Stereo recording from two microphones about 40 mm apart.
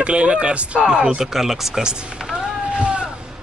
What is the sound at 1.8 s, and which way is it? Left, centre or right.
Speech, right.